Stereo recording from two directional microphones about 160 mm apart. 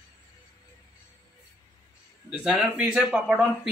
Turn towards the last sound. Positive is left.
turn(degrees=-10)  # may be behind; listen again after turning